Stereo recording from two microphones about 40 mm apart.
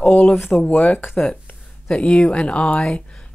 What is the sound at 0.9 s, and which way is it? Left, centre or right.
Speech, left.